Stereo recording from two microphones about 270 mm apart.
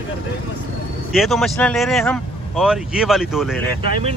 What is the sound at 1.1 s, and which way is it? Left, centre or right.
Speech, centre.